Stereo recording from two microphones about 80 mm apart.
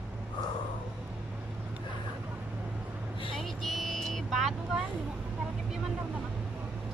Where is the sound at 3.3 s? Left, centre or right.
Centre.